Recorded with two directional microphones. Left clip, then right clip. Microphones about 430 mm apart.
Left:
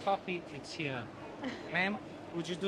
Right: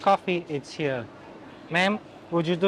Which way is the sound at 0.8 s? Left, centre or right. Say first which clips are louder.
Right 11 dB; right.